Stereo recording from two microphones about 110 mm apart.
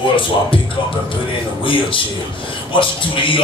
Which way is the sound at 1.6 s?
50° left (ahead or behind).